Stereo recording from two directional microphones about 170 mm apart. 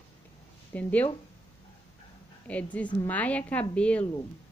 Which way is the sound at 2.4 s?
10° left (ahead or behind).